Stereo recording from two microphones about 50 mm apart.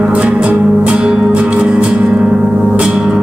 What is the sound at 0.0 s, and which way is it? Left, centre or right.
Music, right.